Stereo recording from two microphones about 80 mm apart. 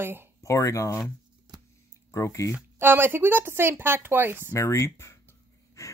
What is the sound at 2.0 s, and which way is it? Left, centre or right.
Speech, left.